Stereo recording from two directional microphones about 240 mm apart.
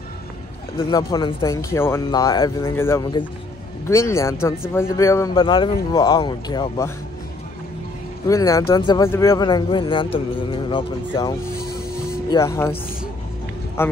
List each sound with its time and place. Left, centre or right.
0.7 s speech: centre
8.3 s speech: centre
13.8 s a man's voice: centre